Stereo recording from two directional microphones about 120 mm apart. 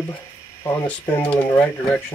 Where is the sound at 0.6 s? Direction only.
20° left (ahead or behind).